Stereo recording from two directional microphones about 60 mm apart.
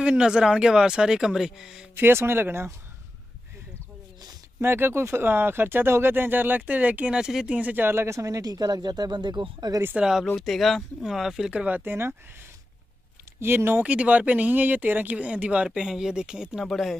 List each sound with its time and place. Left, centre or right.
0.0 s speech: centre
2.0 s speech: right
4.6 s speech: right; by 7.5 s centre
7.5 s speech: right
8.2 s speech: right
9.9 s speech: centre
10.3 s speech: centre
11.5 s speech: right
11.8 s speech: right
13.4 s speech: right
13.8 s speech: right
16.6 s speech: centre